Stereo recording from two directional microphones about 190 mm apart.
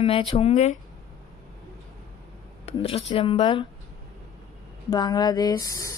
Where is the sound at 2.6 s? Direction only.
30° left (ahead or behind).